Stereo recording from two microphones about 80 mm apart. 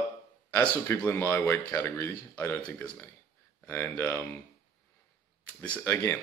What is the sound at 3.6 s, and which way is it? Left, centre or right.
Speech, left.